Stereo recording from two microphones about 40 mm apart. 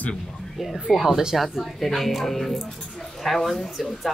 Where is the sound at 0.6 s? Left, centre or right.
Centre.